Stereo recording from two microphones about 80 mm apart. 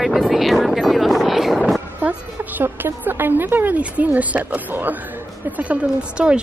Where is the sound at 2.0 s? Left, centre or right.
Right.